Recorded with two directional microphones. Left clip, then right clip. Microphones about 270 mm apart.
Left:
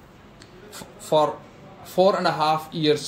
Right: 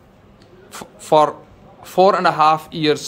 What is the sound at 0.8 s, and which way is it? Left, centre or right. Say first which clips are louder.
Writing: right 6 dB; right.